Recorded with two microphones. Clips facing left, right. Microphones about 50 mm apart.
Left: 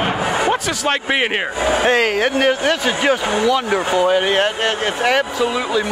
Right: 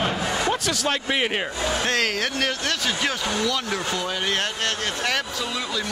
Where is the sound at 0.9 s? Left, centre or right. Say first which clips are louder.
Left 7 dB; left.